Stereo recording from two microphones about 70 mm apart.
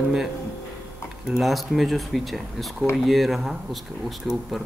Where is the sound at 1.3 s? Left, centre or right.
Centre.